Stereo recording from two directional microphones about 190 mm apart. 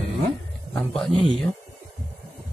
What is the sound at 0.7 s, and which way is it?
Speech, 5° left (ahead or behind).